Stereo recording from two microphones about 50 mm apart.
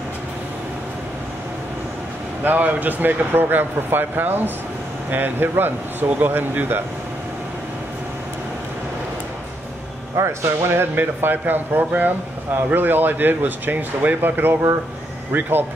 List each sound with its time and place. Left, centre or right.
2.4 s a man's voice: right
10.1 s a man's voice: right